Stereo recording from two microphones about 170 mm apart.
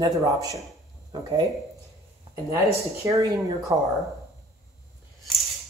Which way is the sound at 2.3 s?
30° right (ahead or behind).